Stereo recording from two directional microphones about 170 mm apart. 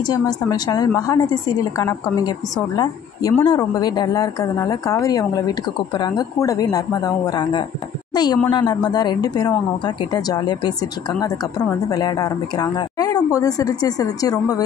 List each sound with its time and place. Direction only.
0.0 s a woman's voice: 25° left (ahead or behind)